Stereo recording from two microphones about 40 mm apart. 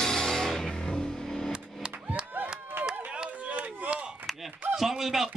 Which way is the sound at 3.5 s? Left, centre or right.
Right.